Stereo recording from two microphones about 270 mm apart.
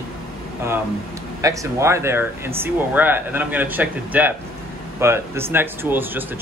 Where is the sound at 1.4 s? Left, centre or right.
Centre.